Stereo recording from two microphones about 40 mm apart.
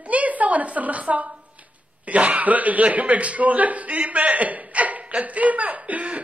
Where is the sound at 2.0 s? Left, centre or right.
Right.